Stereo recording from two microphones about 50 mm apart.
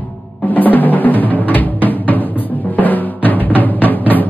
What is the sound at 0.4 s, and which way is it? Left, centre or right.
Drum, left.